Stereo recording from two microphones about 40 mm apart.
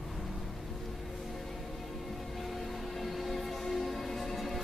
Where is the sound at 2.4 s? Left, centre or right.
Centre.